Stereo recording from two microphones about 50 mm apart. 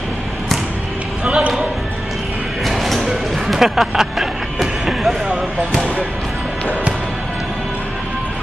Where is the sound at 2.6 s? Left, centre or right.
Centre.